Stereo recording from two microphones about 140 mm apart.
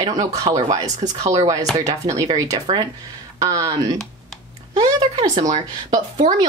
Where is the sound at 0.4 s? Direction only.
50° right (ahead or behind).